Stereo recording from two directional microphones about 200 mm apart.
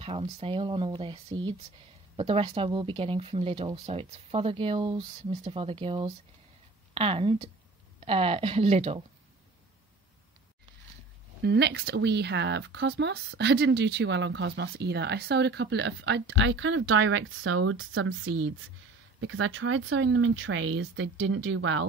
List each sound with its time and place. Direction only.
0.0 s speech: 30° right (ahead or behind)
11.4 s speech: 55° right (ahead or behind)